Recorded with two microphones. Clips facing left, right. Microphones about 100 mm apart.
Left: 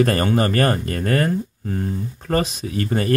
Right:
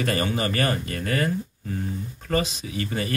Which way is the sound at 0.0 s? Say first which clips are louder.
Left 7 dB; 45° left (ahead or behind).